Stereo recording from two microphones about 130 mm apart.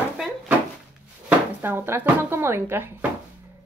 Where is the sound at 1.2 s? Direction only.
15° right (ahead or behind).